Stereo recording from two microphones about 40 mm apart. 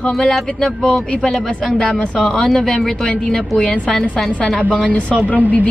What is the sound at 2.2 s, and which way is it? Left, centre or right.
Speech, centre.